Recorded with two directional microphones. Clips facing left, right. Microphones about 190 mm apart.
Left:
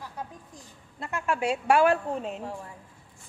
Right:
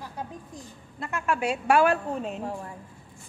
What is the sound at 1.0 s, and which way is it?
A woman's voice, 25° left (ahead or behind).